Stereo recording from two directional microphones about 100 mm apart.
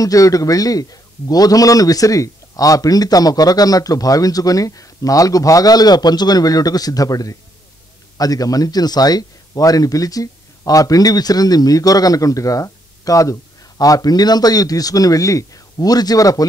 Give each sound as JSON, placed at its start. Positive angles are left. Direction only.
{"t": 0.0, "sound": "a man's voice", "side_deg": 35}